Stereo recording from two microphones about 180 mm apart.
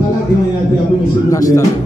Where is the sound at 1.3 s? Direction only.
20° left (ahead or behind).